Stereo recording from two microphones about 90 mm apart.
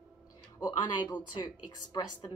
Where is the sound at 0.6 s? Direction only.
50° left (ahead or behind).